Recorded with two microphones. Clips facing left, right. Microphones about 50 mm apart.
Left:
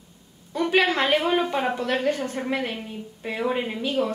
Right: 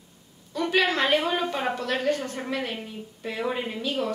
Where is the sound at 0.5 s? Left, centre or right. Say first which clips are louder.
Left 2 dB; left.